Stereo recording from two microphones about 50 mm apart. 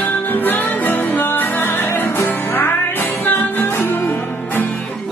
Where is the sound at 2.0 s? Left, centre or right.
Left.